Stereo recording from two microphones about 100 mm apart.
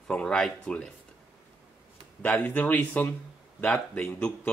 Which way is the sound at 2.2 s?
20° left (ahead or behind).